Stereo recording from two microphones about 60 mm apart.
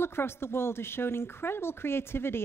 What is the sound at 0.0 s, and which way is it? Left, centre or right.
Speech, left.